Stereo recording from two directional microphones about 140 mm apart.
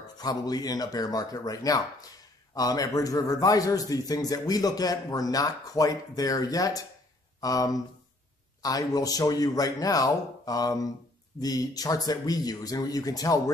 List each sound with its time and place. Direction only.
0.2 s a man's voice: 25° left (ahead or behind)